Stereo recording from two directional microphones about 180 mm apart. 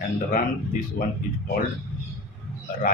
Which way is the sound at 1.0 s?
55° left (ahead or behind).